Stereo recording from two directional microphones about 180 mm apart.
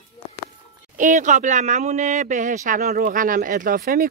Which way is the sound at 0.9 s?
45° right (ahead or behind).